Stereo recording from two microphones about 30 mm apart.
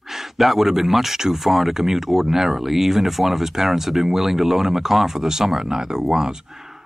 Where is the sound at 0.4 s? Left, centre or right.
Centre.